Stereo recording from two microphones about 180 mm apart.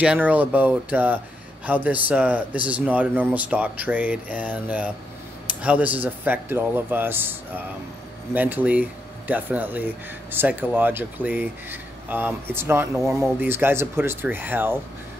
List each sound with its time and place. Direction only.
0.0 s speech: 5° right (ahead or behind)